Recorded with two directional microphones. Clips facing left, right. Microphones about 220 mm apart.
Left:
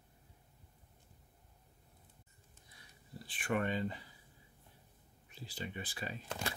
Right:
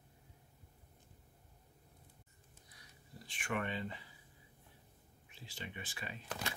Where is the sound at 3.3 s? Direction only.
35° left (ahead or behind).